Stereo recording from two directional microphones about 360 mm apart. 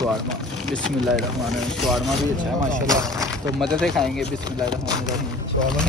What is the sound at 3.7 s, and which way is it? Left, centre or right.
Speech, centre.